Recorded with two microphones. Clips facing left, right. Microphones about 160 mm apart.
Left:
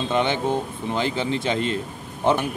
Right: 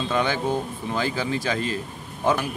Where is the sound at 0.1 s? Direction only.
25° left (ahead or behind).